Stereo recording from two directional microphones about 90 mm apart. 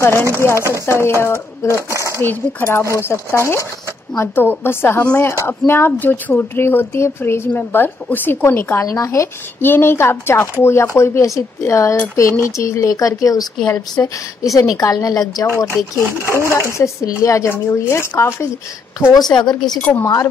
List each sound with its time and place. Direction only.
0.0 s speech: 30° left (ahead or behind)
1.9 s a sound: 35° right (ahead or behind)
2.1 s speech: 25° left (ahead or behind)
8.8 s a woman's voice: 35° left (ahead or behind)
16.2 s speech: 30° right (ahead or behind)
16.5 s a woman's voice: 30° left (ahead or behind)
19.1 s speech: 50° left (ahead or behind)